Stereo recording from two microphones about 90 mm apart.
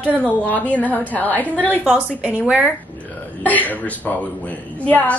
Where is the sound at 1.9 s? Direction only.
15° right (ahead or behind).